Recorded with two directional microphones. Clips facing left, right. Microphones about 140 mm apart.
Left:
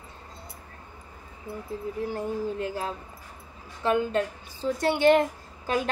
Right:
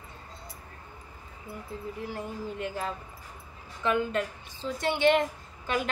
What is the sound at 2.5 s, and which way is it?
A woman's voice, 35° left (ahead or behind).